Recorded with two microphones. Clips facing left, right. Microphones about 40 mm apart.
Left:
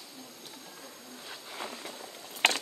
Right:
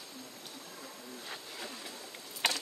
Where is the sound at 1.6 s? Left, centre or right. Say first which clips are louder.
Left 7 dB; left.